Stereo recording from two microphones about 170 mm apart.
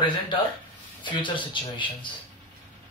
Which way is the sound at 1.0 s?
30° left (ahead or behind).